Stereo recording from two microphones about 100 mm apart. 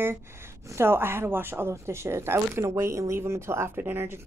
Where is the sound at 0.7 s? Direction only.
25° right (ahead or behind).